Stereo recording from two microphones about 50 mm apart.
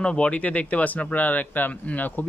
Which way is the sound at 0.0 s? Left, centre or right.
Left.